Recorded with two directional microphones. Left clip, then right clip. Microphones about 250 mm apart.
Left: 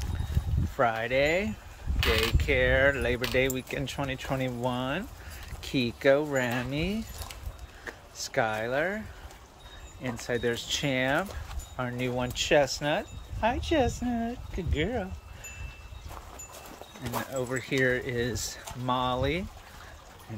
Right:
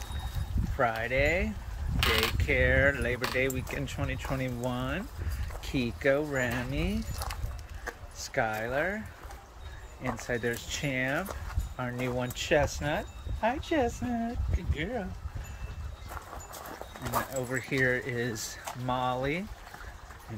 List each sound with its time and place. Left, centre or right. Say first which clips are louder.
0.7 s speech: left 2 dB; centre
10.0 s speech: left 2 dB; centre
17.4 s speech: left 4 dB; centre